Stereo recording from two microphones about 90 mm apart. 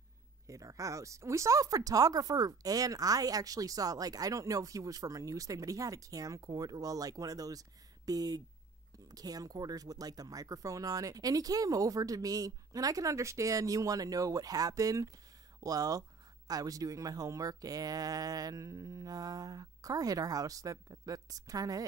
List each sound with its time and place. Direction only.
0.5 s speech: 40° right (ahead or behind)